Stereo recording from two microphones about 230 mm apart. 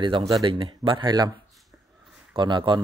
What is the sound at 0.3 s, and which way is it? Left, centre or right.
Speech, centre.